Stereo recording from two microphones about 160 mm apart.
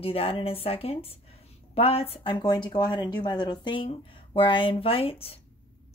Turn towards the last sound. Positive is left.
turn(degrees=35)  # may be behind; listen again after turning